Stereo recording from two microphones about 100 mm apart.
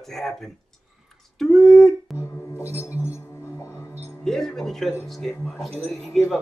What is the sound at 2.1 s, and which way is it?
Music, 25° left (ahead or behind).